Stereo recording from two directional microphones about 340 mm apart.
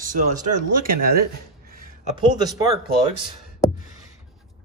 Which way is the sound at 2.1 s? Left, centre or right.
Centre.